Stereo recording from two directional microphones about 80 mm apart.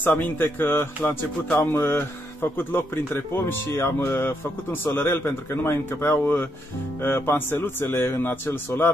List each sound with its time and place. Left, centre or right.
0.0 s speech: left